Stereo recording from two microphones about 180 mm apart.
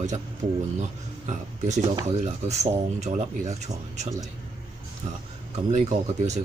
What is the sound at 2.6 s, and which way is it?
Speech, 40° right (ahead or behind).